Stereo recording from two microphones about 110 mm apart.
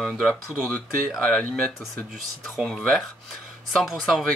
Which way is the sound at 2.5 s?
5° left (ahead or behind).